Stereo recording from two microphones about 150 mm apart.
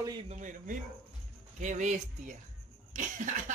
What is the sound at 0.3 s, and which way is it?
Speech, 60° right (ahead or behind).